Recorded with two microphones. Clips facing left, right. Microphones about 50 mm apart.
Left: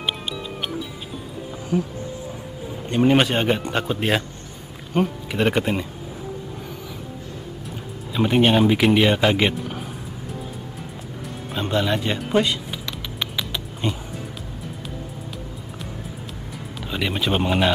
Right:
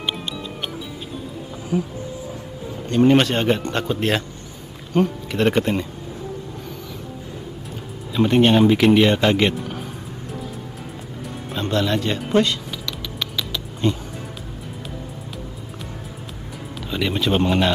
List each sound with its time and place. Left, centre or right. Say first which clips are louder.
1.7 s speech: even; centre
2.9 s speech: right 2 dB; centre
8.1 s speech: right 2 dB; centre
11.2 s music: right 1 dB; centre
12.3 s speech: right 2 dB; centre
13.2 s a sound: even; centre
16.9 s speech: right 2 dB; centre